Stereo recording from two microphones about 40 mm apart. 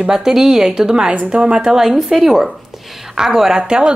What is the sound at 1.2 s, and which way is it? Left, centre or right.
Speech, right.